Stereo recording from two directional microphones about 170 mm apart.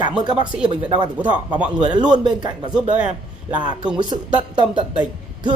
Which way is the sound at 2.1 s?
25° right (ahead or behind).